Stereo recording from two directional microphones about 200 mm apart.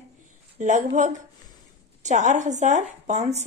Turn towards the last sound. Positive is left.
turn(degrees=-35)  # may be behind; listen again after turning